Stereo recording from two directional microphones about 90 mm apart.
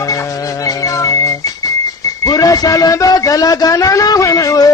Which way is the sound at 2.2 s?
40° left (ahead or behind).